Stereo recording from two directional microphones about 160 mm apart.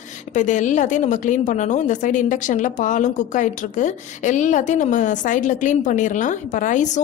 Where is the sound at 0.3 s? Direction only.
50° left (ahead or behind).